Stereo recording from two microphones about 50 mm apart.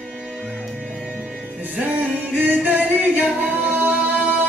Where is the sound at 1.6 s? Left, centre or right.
Right.